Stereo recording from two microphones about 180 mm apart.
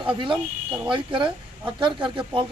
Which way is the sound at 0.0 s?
30° right (ahead or behind).